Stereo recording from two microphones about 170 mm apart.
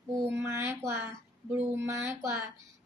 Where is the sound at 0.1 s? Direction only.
15° right (ahead or behind).